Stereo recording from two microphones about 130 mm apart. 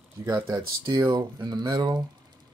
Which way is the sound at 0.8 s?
35° right (ahead or behind).